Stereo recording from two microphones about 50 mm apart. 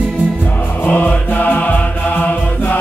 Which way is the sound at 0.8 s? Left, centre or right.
Left.